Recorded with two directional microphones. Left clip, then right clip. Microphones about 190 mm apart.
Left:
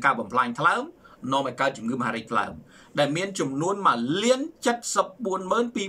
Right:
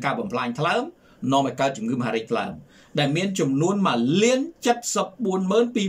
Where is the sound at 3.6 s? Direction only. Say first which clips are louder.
Left 4 dB; 15° right (ahead or behind).